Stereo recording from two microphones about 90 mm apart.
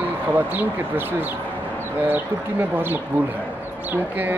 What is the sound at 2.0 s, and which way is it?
Speech, 20° right (ahead or behind).